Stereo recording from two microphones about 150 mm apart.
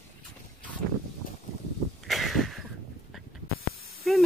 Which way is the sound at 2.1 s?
Centre (ahead or behind).